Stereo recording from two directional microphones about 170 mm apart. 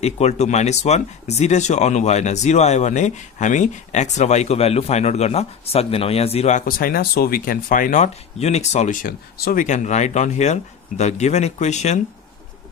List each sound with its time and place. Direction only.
0.0 s speech: 40° left (ahead or behind)
6.6 s speech: 60° left (ahead or behind); by 12.0 s 45° left (ahead or behind)